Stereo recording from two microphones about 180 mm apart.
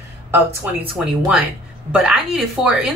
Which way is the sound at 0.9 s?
5° right (ahead or behind).